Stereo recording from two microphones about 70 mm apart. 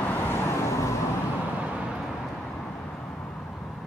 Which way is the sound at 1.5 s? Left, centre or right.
Centre.